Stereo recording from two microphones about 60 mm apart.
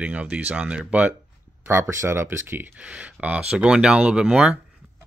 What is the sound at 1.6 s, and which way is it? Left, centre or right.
Speech, right.